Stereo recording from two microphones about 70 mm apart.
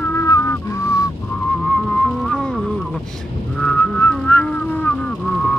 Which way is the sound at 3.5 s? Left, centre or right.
Centre.